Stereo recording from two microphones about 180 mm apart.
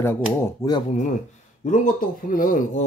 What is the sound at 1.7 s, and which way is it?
Speech, 50° left (ahead or behind).